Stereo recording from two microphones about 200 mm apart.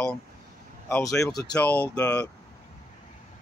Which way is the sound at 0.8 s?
15° left (ahead or behind).